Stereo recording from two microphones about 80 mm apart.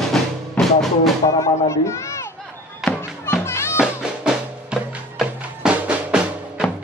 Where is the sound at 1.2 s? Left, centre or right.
Left.